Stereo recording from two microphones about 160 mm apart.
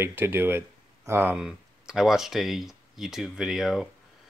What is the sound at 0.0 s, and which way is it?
Speech, 15° right (ahead or behind).